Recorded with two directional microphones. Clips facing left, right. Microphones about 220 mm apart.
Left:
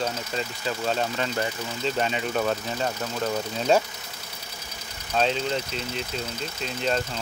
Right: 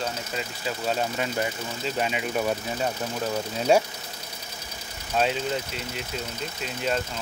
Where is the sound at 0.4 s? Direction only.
10° right (ahead or behind).